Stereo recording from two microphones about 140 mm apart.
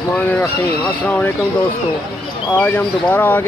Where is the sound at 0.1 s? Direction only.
10° left (ahead or behind).